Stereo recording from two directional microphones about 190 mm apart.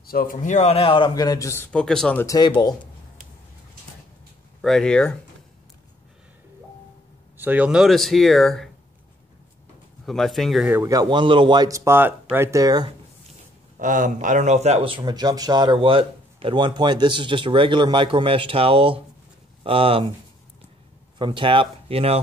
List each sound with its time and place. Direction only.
0.0 s a man's voice: 50° left (ahead or behind); by 2.2 s 5° left (ahead or behind)
2.2 s a man's voice: 20° left (ahead or behind)
4.6 s speech: centre (ahead or behind)
7.3 s speech: 10° right (ahead or behind)
10.0 s speech: centre (ahead or behind)
10.7 s speech: 15° right (ahead or behind)
13.7 s speech: 45° right (ahead or behind)
21.2 s speech: 25° right (ahead or behind)